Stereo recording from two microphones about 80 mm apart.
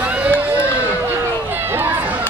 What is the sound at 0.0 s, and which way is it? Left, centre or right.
Run, centre.